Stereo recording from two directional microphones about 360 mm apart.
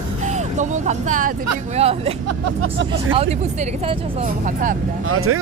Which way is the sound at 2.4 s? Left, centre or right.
Right.